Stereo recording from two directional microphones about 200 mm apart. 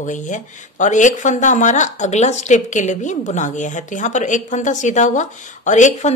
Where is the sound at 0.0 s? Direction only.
40° left (ahead or behind).